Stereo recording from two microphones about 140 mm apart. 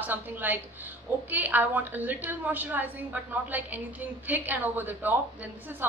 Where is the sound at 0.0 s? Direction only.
10° right (ahead or behind).